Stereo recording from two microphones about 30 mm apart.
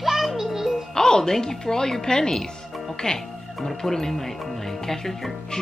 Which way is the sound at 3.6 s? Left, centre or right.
Centre.